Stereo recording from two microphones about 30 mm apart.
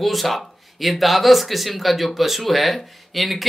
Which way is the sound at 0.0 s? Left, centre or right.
Centre.